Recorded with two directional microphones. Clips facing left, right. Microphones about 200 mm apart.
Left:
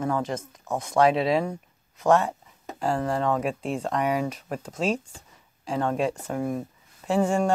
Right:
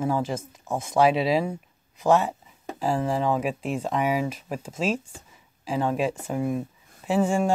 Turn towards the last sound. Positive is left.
turn(degrees=-5)  # may be behind; listen again after turning